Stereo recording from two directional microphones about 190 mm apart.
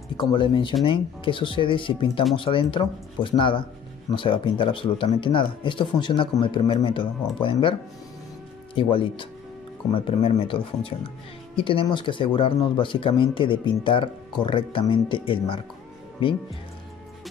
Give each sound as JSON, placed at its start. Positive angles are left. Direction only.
{"t": 0.2, "sound": "speech", "side_deg": 25}
{"t": 8.7, "sound": "speech", "side_deg": 25}